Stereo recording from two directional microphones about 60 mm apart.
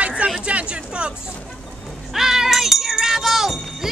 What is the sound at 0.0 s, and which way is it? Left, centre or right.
Chatter, centre.